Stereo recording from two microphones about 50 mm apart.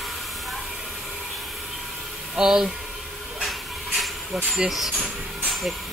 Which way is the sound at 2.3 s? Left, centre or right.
Centre.